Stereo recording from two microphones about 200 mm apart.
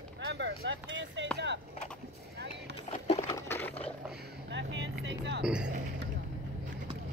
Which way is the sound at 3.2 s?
15° left (ahead or behind).